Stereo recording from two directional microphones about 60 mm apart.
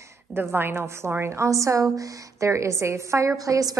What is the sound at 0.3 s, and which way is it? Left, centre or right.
A woman's voice, right.